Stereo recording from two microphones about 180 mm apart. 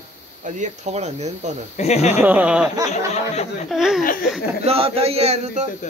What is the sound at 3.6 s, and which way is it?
Speech, centre (ahead or behind).